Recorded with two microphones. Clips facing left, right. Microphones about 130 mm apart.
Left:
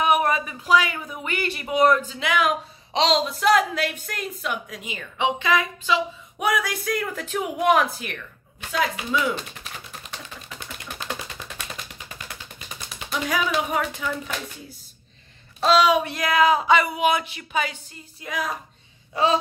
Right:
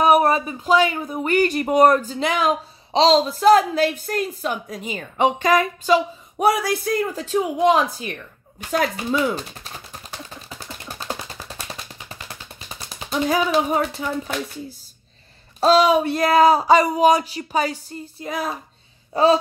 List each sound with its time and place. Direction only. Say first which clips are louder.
0.0 s speech: right 5 dB; 35° right (ahead or behind)
8.7 s speech: right 3 dB; 45° right (ahead or behind)
10.5 s a sound: even; 35° right (ahead or behind)
15.6 s speech: right 3 dB; 35° right (ahead or behind)